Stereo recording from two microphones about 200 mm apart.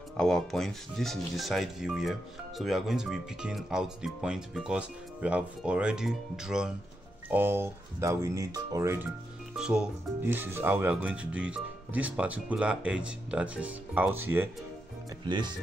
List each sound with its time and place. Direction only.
0.2 s speech: centre (ahead or behind)
15.2 s speech: 20° right (ahead or behind)